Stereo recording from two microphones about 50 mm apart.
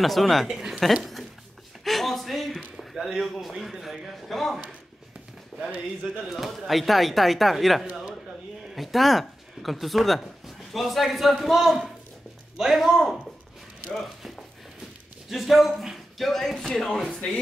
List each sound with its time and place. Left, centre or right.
0.0 s speech: centre
1.9 s a sound: centre
2.8 s speech: centre
17.1 s speech: centre